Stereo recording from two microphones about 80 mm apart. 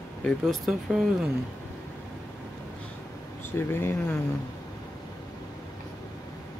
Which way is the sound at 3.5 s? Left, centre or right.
Left.